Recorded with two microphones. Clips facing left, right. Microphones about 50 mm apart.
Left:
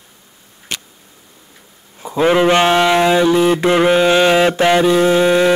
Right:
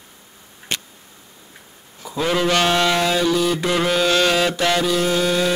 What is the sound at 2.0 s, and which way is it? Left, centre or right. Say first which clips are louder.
Mantra: left 7 dB; left.